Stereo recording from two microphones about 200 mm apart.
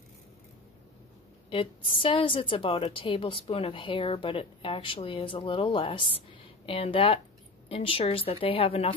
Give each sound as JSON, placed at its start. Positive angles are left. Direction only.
{"t": 1.5, "sound": "a woman's voice", "side_deg": 25}